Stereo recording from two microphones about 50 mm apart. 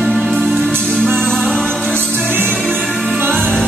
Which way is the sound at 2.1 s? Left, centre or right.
Right.